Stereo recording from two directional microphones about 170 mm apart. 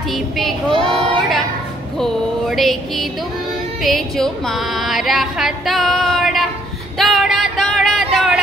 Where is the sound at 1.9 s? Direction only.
Centre (ahead or behind).